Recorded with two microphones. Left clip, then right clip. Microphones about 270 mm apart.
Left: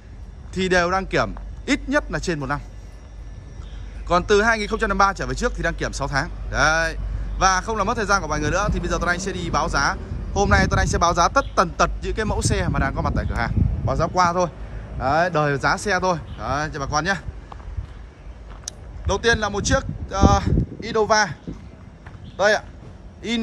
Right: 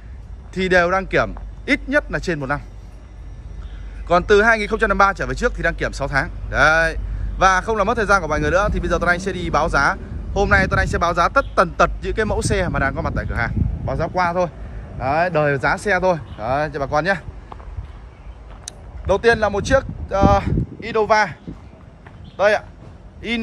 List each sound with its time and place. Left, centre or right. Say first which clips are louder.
0.6 s speech: right 3 dB; centre
4.1 s speech: right 4 dB; centre
18.7 s speech: right 6 dB; centre
22.4 s speech: right 2 dB; centre